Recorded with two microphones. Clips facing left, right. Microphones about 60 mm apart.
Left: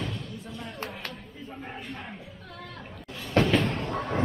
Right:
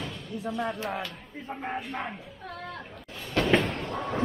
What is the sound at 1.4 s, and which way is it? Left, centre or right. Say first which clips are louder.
Speech: right 7 dB; right.